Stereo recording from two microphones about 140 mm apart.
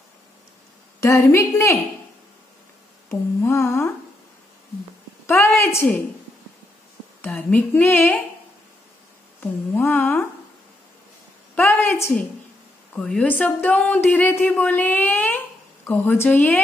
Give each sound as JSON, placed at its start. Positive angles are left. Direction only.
{"t": 1.0, "sound": "humming", "side_deg": 20}
{"t": 3.1, "sound": "humming", "side_deg": 20}
{"t": 5.2, "sound": "a woman's voice", "side_deg": 15}
{"t": 7.2, "sound": "speech", "side_deg": 10}
{"t": 9.4, "sound": "speech", "side_deg": 15}
{"t": 11.5, "sound": "a sound", "side_deg": 10}
{"t": 12.9, "sound": "speech", "side_deg": 5}